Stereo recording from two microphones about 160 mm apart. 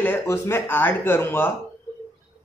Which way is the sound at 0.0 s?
15° left (ahead or behind).